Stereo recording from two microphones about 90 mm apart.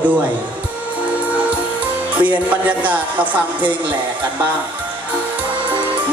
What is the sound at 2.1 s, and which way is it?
Speech, 15° right (ahead or behind).